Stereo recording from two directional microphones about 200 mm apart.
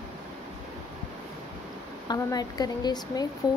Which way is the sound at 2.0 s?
20° left (ahead or behind).